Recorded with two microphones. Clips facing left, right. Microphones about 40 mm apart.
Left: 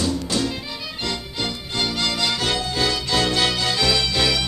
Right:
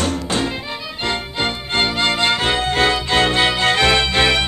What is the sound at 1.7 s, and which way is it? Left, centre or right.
Music, right.